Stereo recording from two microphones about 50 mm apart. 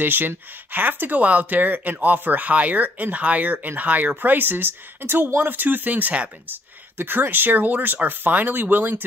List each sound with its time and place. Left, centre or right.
0.0 s speech: right
6.4 s speech: right